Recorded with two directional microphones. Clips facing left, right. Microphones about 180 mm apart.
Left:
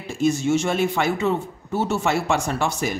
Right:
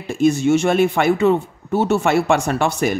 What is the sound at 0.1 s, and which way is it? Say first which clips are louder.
Speech: right 5 dB; 60° right (ahead or behind).